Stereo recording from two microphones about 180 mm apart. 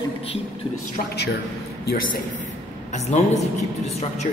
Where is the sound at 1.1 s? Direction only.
70° left (ahead or behind).